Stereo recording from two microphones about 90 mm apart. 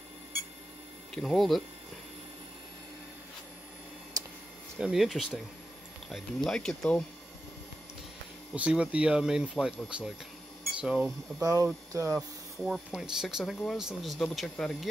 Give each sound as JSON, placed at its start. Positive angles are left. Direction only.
{"t": 1.1, "sound": "speech", "side_deg": 5}
{"t": 4.7, "sound": "speech", "side_deg": -5}
{"t": 8.5, "sound": "speech", "side_deg": -10}
{"t": 11.3, "sound": "speech", "side_deg": -35}
{"t": 12.6, "sound": "speech", "side_deg": -5}